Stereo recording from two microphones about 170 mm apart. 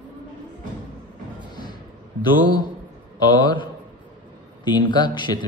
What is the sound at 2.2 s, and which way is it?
Speech, 25° left (ahead or behind).